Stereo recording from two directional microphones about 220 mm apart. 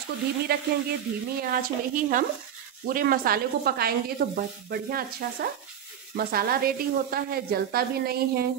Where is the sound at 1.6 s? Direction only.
40° right (ahead or behind).